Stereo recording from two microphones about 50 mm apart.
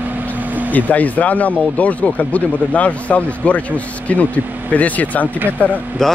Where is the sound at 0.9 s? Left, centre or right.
Left.